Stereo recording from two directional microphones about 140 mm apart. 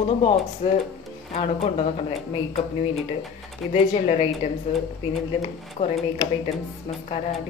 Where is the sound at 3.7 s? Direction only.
45° left (ahead or behind).